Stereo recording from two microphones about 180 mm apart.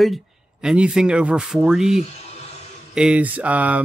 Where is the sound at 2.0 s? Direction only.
35° left (ahead or behind).